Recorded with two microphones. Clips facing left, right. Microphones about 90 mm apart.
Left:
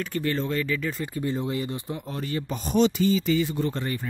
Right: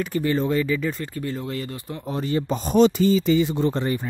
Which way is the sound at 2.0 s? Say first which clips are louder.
Right 9 dB; 25° right (ahead or behind).